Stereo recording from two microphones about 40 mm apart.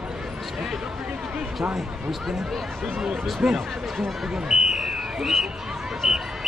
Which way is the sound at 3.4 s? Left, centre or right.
Centre.